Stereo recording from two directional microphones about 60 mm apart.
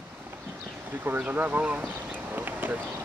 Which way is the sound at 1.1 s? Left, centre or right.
Right.